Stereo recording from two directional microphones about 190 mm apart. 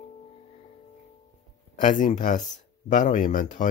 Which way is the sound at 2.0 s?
45° left (ahead or behind).